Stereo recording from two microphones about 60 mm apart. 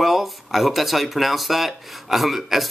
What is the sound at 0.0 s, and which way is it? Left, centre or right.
Speech, centre.